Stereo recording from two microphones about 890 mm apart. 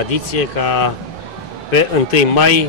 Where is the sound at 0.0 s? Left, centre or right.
Left.